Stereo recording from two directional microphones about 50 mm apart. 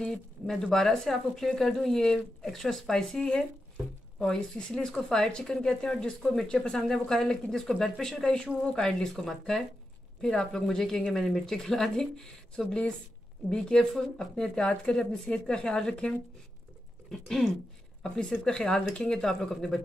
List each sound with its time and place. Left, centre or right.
0.0 s speech: centre
18.4 s speech: centre
19.2 s speech: centre